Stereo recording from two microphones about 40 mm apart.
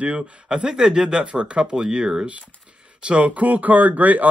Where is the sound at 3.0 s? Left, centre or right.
Right.